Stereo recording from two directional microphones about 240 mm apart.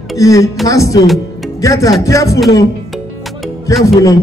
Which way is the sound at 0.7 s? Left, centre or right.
Centre.